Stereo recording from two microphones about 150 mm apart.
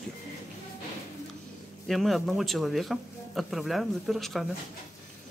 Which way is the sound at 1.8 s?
Centre (ahead or behind).